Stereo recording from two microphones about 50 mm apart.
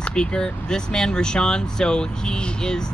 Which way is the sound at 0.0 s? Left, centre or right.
Centre.